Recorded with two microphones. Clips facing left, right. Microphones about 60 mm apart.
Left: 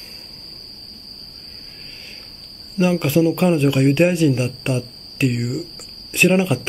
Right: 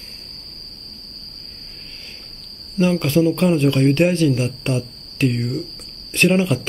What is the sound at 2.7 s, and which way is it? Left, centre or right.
Speech, centre.